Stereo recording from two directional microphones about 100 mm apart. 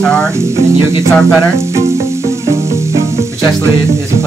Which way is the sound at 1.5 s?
30° right (ahead or behind).